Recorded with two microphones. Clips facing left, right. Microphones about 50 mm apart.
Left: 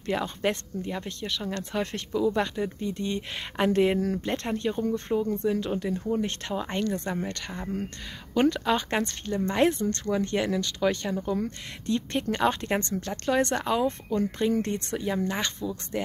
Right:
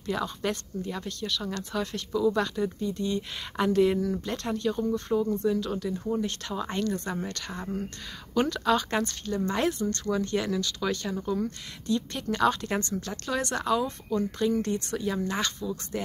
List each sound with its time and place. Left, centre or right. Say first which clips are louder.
0.1 s speech: left 2 dB; left
2.1 s speech: even; left
2.9 s speech: right 1 dB; left; by 9.0 s centre
9.0 s speech: left 1 dB; left
10.1 s speech: left 2 dB; left
11.3 s speech: even; left
15.0 s speech: left 3 dB; centre